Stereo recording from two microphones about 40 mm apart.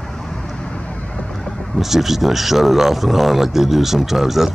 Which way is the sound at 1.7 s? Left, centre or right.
Centre.